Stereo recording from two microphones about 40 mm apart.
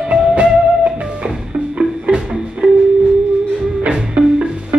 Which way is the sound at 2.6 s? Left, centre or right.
Centre.